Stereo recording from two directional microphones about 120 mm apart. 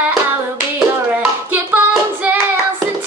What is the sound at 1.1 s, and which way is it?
Hands, 15° right (ahead or behind).